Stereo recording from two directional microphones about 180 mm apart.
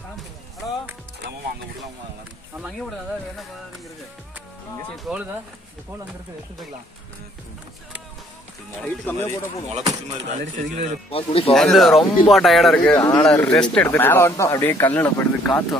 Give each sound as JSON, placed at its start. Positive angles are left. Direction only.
{"t": 4.9, "sound": "speech", "side_deg": -5}
{"t": 8.8, "sound": "speech", "side_deg": 10}
{"t": 10.2, "sound": "speech", "side_deg": -40}
{"t": 11.1, "sound": "speech", "side_deg": 30}
{"t": 11.5, "sound": "speech", "side_deg": 0}
{"t": 12.9, "sound": "speech", "side_deg": 20}
{"t": 13.2, "sound": "speech", "side_deg": 5}